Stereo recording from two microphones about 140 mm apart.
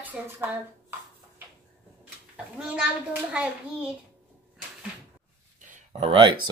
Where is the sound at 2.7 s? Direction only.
10° right (ahead or behind).